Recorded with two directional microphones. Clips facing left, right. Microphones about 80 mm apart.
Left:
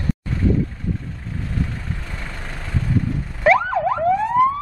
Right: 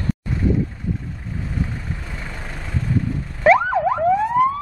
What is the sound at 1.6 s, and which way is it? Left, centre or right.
Vehicle, centre.